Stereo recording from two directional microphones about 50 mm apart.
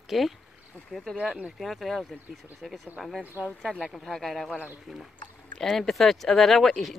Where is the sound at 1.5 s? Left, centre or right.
Centre.